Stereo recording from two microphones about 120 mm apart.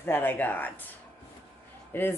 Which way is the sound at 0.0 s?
15° left (ahead or behind).